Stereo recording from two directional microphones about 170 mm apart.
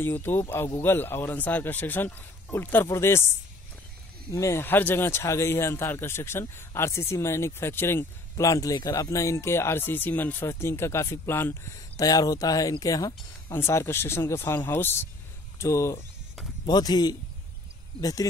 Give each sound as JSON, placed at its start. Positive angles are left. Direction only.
{"t": 0.0, "sound": "speech", "side_deg": 15}
{"t": 4.3, "sound": "a man's voice", "side_deg": 15}